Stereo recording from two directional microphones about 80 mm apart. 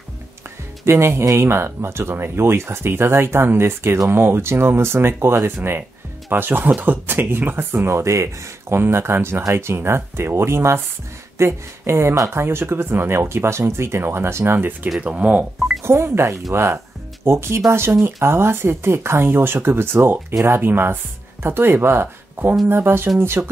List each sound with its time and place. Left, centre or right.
0.8 s speech: right
15.8 s speech: right